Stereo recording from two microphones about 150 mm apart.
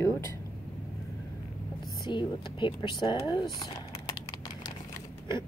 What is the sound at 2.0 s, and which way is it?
Speech, 30° left (ahead or behind).